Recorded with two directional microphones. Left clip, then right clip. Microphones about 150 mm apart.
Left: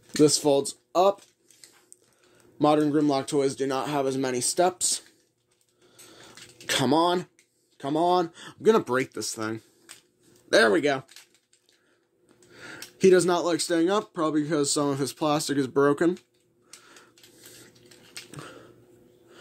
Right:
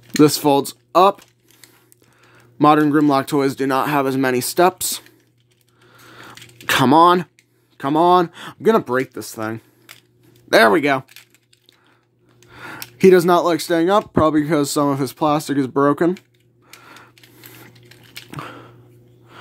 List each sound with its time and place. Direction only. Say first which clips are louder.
0.2 s speech: right 6 dB; 50° right (ahead or behind)
2.6 s speech: right 8 dB; 45° right (ahead or behind)
6.1 s a sound: right 9 dB; 40° right (ahead or behind)
7.7 s speech: right 9 dB; 45° right (ahead or behind)
8.6 s speech: right 5 dB; 20° right (ahead or behind)
10.5 s speech: right 7 dB; 40° right (ahead or behind)
12.4 s speech: right 8 dB; 40° right (ahead or behind); by 16.3 s 25° right (ahead or behind)
16.8 s printer: right 9 dB; 50° right (ahead or behind)
18.3 s a sound: right 10 dB; 45° right (ahead or behind)